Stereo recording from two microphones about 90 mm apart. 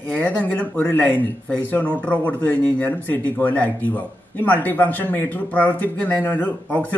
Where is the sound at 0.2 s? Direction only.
15° left (ahead or behind).